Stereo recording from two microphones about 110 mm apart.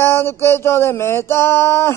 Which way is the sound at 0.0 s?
20° left (ahead or behind).